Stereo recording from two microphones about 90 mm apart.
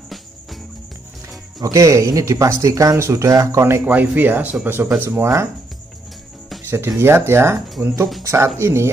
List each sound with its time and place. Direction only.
1.6 s speech: 35° right (ahead or behind)
3.8 s speech: 20° right (ahead or behind)
6.6 s music: 30° right (ahead or behind)
7.0 s speech: 25° right (ahead or behind)